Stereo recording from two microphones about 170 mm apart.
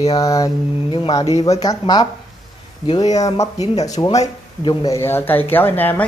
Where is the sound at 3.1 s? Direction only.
20° left (ahead or behind).